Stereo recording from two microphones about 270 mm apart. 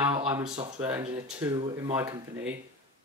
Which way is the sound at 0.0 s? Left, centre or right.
Centre.